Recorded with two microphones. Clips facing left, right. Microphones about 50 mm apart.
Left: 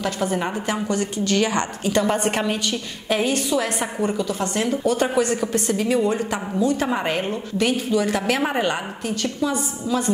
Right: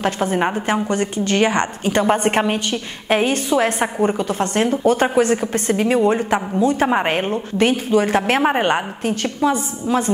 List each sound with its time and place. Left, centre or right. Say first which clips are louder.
0.0 s a woman's voice: right 4 dB; right